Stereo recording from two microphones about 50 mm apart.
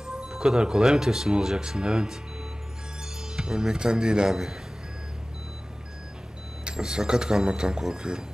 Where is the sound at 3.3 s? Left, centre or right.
Centre.